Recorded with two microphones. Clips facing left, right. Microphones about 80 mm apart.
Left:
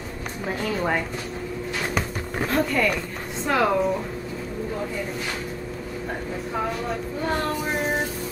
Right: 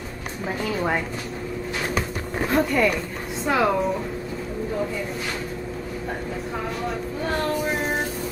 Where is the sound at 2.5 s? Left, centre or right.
Centre.